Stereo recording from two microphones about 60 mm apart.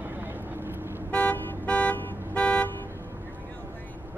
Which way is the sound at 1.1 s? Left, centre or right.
Left.